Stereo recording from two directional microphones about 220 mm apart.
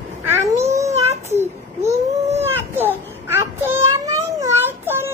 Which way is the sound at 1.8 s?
30° right (ahead or behind).